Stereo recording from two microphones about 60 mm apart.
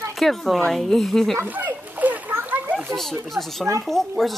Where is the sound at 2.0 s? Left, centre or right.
Right.